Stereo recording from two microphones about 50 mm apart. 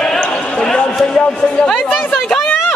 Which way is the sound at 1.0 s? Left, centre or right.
Left.